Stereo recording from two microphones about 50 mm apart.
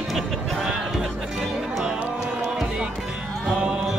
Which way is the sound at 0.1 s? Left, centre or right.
Centre.